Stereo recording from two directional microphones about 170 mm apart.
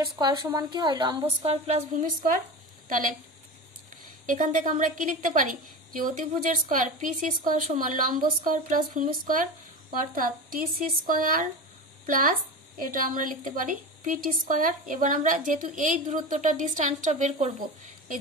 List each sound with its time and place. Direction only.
0.2 s a woman's voice: 25° right (ahead or behind)
1.4 s mantra: 40° right (ahead or behind)
2.9 s a woman's voice: 50° right (ahead or behind)
12.7 s a woman's voice: 55° right (ahead or behind)